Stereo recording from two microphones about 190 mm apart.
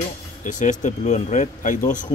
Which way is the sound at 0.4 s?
40° left (ahead or behind).